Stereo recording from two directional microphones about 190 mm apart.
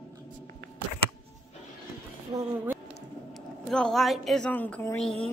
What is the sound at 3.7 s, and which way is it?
A woman's voice, 5° left (ahead or behind).